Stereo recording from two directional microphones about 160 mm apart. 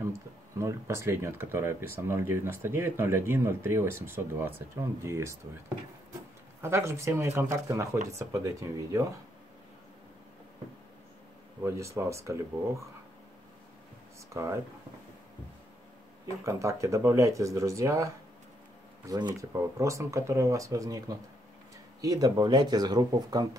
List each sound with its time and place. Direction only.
0.6 s speech: 20° right (ahead or behind)
6.6 s speech: 15° right (ahead or behind)
11.6 s speech: 20° right (ahead or behind)
14.3 s speech: 20° right (ahead or behind)
16.4 s speech: 20° right (ahead or behind)